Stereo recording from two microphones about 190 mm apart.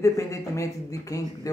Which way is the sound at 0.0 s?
15° left (ahead or behind).